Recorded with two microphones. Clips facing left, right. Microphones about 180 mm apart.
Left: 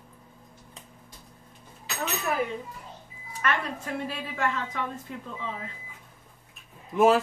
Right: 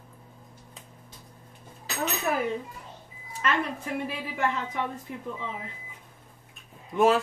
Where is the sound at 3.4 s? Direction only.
15° right (ahead or behind).